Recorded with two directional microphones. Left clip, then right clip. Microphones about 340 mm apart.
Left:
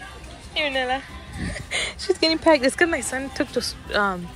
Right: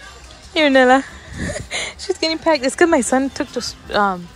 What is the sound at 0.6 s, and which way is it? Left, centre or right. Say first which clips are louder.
Speech: right 11 dB; right.